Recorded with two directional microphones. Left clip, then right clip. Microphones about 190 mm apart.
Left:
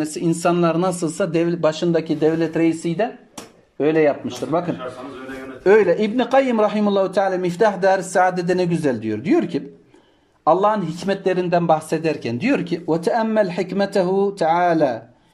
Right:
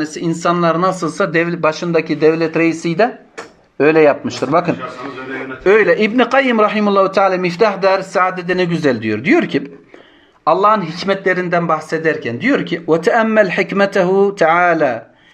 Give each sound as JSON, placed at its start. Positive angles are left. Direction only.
{"t": 0.0, "sound": "a man's voice", "side_deg": 45}
{"t": 4.1, "sound": "speech", "side_deg": 15}
{"t": 5.6, "sound": "a man's voice", "side_deg": 35}
{"t": 8.7, "sound": "speech", "side_deg": 30}
{"t": 12.8, "sound": "speech", "side_deg": 30}